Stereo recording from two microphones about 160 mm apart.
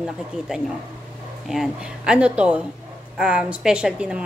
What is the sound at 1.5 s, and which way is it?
A woman's voice, 5° right (ahead or behind).